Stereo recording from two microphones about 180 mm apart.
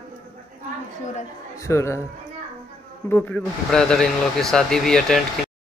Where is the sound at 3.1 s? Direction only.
10° left (ahead or behind).